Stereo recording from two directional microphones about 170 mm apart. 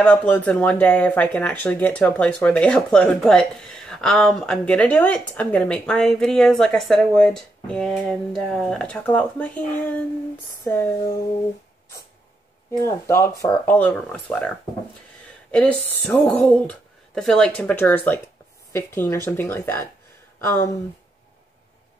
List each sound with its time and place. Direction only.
0.0 s speech: 5° left (ahead or behind)
10.7 s speech: 15° left (ahead or behind)
12.8 s speech: 15° left (ahead or behind)
13.7 s speech: 10° left (ahead or behind)
15.5 s speech: 5° left (ahead or behind)